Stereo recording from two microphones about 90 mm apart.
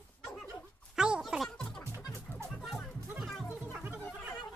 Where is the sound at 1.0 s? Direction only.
5° right (ahead or behind).